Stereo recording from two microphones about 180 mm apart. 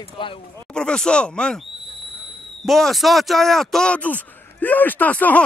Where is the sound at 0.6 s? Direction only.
5° left (ahead or behind).